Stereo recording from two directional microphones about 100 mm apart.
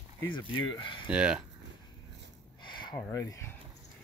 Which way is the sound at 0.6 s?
55° left (ahead or behind).